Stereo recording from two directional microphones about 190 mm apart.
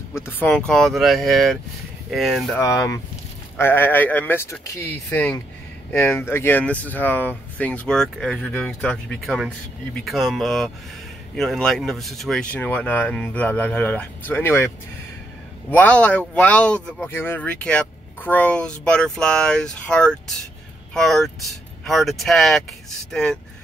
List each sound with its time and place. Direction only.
0.1 s speech: 10° left (ahead or behind)
2.6 s speech: 15° left (ahead or behind)
15.7 s speech: 10° left (ahead or behind)